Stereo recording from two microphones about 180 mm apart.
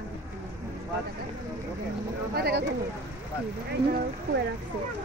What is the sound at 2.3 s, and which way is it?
Speech, 65° right (ahead or behind).